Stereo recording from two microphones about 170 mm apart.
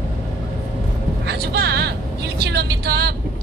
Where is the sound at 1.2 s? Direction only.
75° right (ahead or behind).